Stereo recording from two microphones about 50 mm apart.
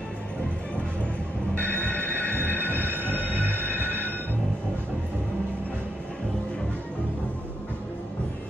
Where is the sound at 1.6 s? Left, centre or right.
Left.